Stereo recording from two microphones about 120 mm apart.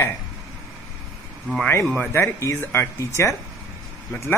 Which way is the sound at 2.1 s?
25° left (ahead or behind).